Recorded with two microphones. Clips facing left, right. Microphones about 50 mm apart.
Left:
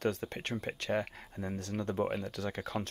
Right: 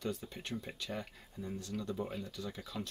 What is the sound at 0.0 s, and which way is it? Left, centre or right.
Speech, left.